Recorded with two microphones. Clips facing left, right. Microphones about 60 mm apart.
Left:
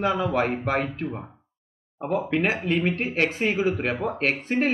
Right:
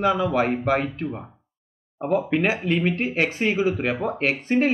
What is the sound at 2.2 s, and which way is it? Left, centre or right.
Speech, centre.